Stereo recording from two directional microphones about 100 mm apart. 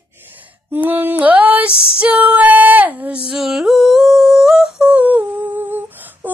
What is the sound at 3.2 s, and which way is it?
Humming, 5° right (ahead or behind).